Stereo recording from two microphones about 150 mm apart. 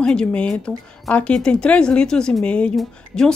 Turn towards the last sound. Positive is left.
turn(degrees=5)  # may be behind; listen again after turning